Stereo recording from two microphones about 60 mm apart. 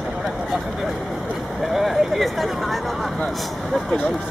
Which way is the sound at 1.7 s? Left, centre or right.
Centre.